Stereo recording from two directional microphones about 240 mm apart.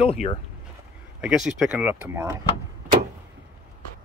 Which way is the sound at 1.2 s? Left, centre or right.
Centre.